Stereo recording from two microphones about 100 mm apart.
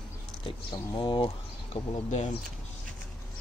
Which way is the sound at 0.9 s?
50° left (ahead or behind).